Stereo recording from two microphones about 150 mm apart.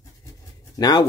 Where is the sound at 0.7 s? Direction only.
25° left (ahead or behind).